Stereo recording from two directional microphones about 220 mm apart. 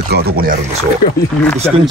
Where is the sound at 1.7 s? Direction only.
Centre (ahead or behind).